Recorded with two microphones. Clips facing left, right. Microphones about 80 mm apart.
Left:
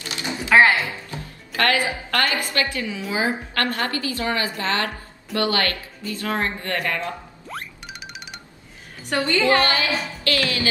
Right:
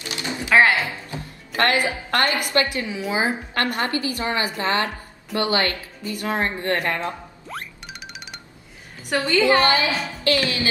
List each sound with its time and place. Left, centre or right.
0.5 s speech: centre
0.8 s music: right
2.0 s a woman's voice: right
7.4 s music: centre
9.1 s a woman's voice: centre